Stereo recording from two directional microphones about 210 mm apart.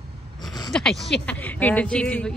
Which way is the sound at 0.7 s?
5° left (ahead or behind).